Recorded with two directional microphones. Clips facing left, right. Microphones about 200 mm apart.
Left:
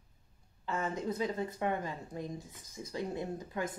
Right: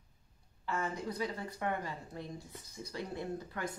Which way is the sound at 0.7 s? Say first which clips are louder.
Left 2 dB; 20° left (ahead or behind).